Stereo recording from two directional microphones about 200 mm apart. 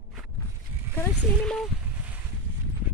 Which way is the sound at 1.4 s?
5° left (ahead or behind).